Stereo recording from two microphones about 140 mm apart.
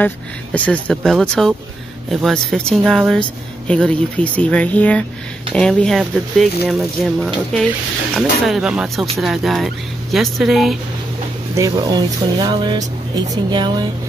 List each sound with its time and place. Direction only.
0.0 s speech: 10° left (ahead or behind)
11.5 s speech: 25° right (ahead or behind)